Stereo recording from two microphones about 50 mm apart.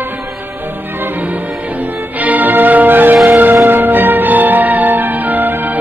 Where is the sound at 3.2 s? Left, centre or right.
Right.